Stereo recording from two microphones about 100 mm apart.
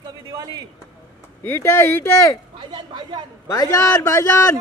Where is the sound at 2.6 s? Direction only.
50° right (ahead or behind).